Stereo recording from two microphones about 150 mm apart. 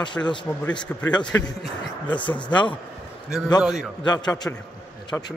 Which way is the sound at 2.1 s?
30° left (ahead or behind).